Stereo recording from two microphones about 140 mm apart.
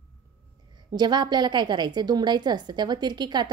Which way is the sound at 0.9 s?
30° right (ahead or behind).